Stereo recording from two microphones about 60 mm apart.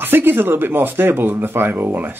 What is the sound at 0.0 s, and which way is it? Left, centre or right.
Speech, right.